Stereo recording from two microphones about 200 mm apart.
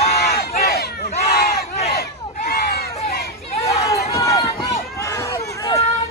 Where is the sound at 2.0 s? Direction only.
50° left (ahead or behind).